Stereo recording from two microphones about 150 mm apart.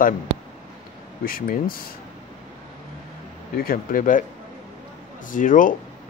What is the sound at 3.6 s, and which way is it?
Speech, 70° left (ahead or behind).